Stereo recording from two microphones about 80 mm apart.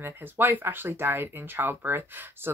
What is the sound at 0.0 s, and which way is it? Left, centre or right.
Speech, right.